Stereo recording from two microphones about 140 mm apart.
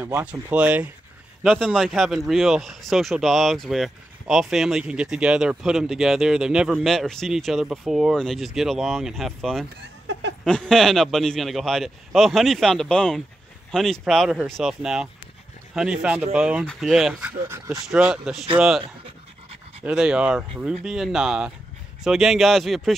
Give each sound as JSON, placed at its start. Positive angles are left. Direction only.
{"t": 0.0, "sound": "speech", "side_deg": -15}
{"t": 1.4, "sound": "speech", "side_deg": 0}
{"t": 17.5, "sound": "speech", "side_deg": -20}
{"t": 17.8, "sound": "speech", "side_deg": -5}
{"t": 19.8, "sound": "speech", "side_deg": -5}